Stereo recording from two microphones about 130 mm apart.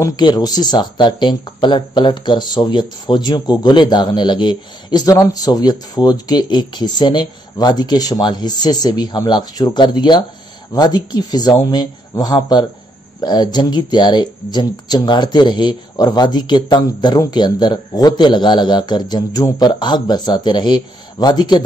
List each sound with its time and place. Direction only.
0.0 s speech: 35° left (ahead or behind)